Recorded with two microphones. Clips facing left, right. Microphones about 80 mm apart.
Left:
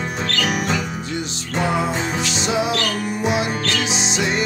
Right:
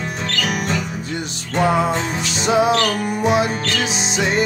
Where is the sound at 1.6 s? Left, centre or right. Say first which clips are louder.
Right 3 dB; right.